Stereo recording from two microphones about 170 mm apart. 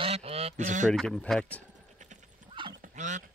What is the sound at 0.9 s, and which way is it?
Speech, 5° left (ahead or behind).